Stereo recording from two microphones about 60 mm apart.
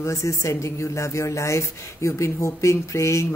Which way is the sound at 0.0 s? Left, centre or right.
Left.